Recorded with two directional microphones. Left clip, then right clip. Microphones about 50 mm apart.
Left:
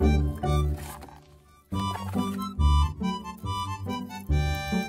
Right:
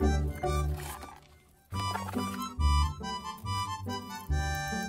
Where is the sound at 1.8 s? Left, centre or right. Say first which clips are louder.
Left 2 dB; right.